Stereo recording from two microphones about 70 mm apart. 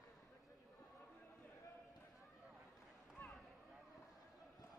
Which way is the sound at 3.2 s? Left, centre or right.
Left.